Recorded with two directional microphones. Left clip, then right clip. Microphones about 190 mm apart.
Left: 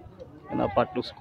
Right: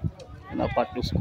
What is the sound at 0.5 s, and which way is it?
Speech, 15° right (ahead or behind).